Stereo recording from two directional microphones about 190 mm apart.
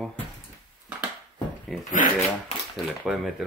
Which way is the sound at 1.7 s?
Centre (ahead or behind).